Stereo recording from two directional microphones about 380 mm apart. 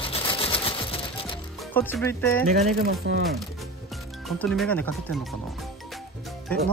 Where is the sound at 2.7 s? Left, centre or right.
Right.